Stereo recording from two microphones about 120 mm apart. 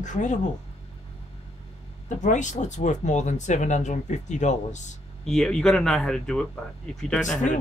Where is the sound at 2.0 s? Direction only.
90° left.